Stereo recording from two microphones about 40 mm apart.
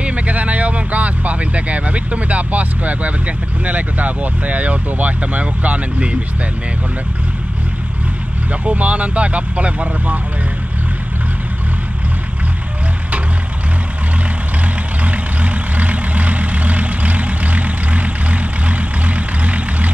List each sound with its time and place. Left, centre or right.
0.0 s speech: right
8.5 s speech: right
15.0 s vehicle: right